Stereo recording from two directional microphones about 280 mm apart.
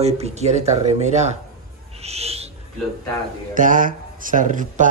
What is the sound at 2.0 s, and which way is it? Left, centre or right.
Owl, right.